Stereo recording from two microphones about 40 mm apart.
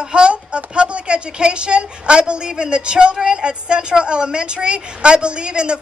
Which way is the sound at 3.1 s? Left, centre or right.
Right.